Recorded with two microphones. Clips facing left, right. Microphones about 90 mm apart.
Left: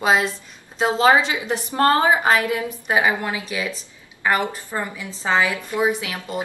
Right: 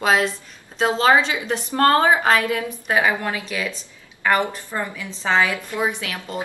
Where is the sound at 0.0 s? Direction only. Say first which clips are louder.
Even; 5° left (ahead or behind).